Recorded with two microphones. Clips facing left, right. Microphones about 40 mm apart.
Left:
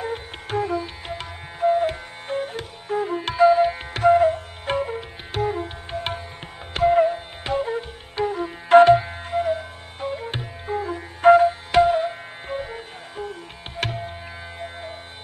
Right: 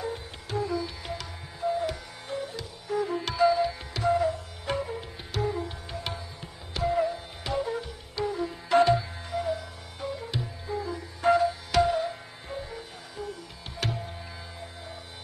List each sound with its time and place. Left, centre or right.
0.0 s music: left